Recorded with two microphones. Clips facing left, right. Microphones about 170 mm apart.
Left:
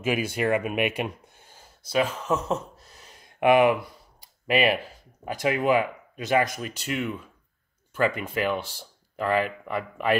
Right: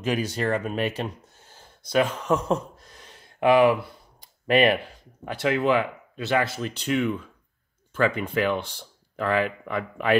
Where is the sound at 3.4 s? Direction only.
20° left (ahead or behind).